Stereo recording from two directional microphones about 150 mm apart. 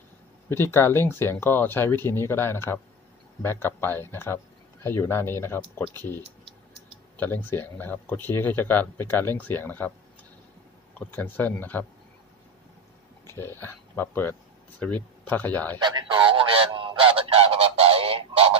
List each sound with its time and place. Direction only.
0.5 s speech: 15° left (ahead or behind)
7.2 s speech: 15° left (ahead or behind)
11.0 s speech: 10° left (ahead or behind)
13.3 s speech: 15° left (ahead or behind)
15.8 s honk: 35° right (ahead or behind)